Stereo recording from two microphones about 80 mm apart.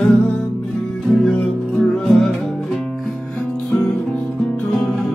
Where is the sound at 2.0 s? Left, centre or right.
Centre.